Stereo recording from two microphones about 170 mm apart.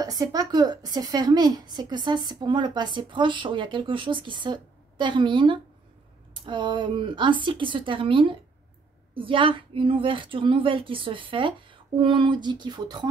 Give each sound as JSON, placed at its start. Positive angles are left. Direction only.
{"t": 0.0, "sound": "a woman's voice", "side_deg": -20}